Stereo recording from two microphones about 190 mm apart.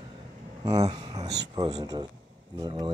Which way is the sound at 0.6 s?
35° right (ahead or behind).